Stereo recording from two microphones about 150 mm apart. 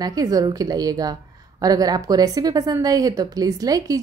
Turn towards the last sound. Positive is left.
turn(degrees=-25)  # may be behind; listen again after turning